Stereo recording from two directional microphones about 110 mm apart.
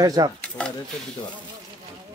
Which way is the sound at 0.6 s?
10° left (ahead or behind).